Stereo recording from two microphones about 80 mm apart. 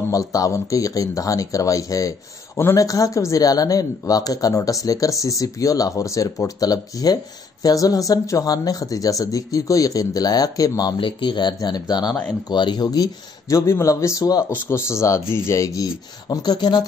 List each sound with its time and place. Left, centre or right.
0.1 s speech: left
11.0 s speech: left
14.5 s speech: left